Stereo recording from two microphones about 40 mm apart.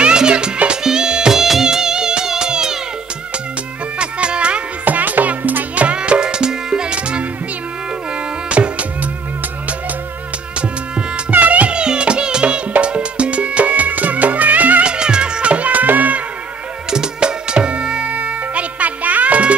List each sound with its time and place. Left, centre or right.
0.0 s music: right
4.0 s music: right
4.8 s music: right
5.9 s music: right
8.5 s music: right
11.3 s music: right
11.7 s music: right
14.8 s music: right
15.7 s music: right
16.9 s music: centre; by 19.5 s right